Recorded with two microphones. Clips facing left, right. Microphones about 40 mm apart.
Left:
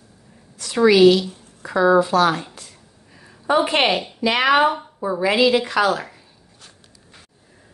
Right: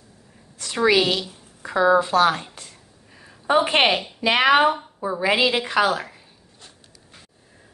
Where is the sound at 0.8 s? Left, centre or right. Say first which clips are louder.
Left 6 dB; right.